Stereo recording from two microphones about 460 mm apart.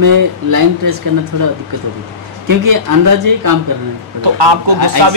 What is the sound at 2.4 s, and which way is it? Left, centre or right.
Speech, right.